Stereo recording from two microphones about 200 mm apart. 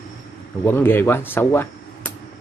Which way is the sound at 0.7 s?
10° left (ahead or behind).